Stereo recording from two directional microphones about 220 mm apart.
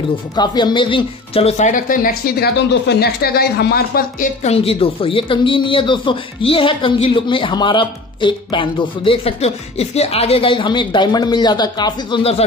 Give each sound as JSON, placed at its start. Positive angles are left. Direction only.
{"t": 0.4, "sound": "speech", "side_deg": 20}